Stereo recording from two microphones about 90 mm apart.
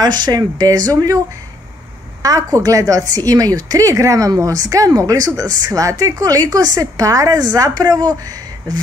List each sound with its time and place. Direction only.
0.0 s a woman's voice: 50° right (ahead or behind)
2.2 s a woman's voice: 45° right (ahead or behind)
8.2 s a sound: 45° right (ahead or behind)